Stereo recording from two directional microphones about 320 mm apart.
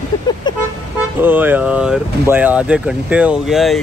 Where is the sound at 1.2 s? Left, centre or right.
Centre.